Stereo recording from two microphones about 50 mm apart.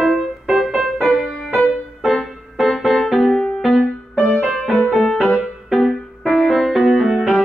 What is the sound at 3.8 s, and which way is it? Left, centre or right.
Music, centre.